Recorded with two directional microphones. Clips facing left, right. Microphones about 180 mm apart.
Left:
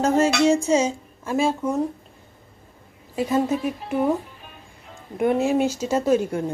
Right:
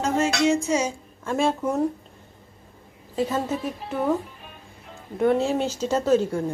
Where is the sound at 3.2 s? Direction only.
10° left (ahead or behind).